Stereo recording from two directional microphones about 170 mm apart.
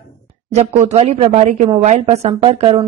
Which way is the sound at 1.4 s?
45° right (ahead or behind).